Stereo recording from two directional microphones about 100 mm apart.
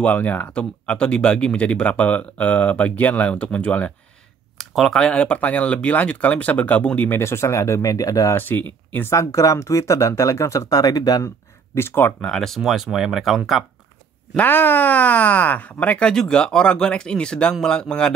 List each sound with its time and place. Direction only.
0.0 s speech: 15° left (ahead or behind)
4.6 s speech: centre (ahead or behind); by 8.4 s 35° left (ahead or behind)
8.4 s speech: 20° left (ahead or behind)
9.1 s speech: 30° left (ahead or behind)
11.2 s speech: 25° left (ahead or behind)
12.2 s speech: 5° left (ahead or behind)
14.3 s speech: 20° left (ahead or behind)